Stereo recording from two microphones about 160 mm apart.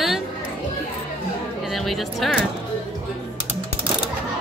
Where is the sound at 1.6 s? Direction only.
Centre (ahead or behind).